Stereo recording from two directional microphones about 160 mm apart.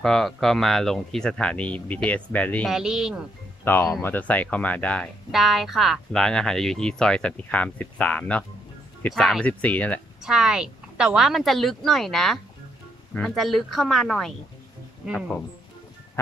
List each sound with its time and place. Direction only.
0.0 s speech: centre (ahead or behind)
2.7 s speech: 5° right (ahead or behind)
3.6 s speech: 15° left (ahead or behind)
10.2 s speech: 5° right (ahead or behind)